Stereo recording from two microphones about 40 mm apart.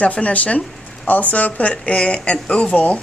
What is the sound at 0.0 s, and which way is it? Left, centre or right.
Speech, left.